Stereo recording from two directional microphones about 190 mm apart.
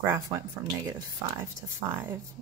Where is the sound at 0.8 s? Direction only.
20° right (ahead or behind).